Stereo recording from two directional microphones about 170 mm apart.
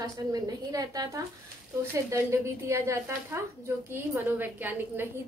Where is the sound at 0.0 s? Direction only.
20° right (ahead or behind).